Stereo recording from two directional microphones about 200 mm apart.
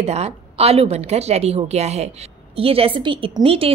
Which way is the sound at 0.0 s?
30° right (ahead or behind).